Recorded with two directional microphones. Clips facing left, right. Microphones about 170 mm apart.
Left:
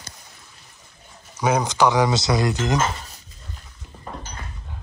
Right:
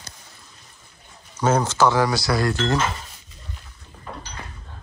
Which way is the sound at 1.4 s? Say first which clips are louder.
Even; 15° left (ahead or behind).